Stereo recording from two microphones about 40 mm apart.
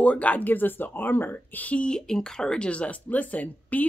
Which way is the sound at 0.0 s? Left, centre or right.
Left.